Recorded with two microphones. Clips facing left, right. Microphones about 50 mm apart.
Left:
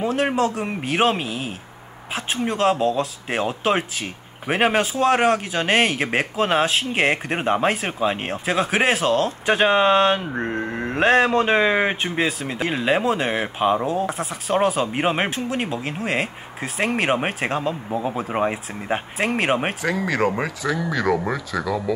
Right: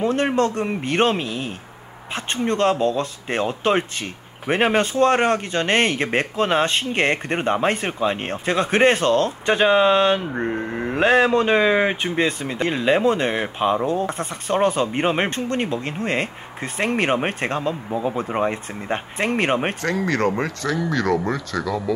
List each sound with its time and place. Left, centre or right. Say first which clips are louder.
0.0 s speech: right 1 dB; centre